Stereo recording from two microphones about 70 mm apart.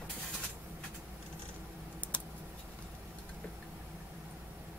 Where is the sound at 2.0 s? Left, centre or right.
Left.